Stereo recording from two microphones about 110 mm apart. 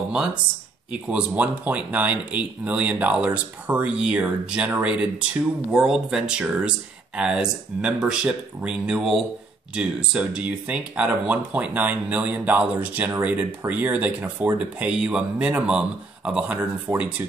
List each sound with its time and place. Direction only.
0.1 s speech: 10° right (ahead or behind)